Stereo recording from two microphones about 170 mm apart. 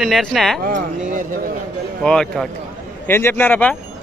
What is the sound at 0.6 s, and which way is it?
Speech, 50° right (ahead or behind).